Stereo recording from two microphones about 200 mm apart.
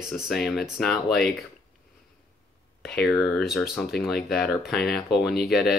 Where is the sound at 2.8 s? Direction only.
5° left (ahead or behind).